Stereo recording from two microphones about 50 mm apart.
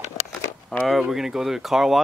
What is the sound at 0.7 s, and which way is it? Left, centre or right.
Speech, centre.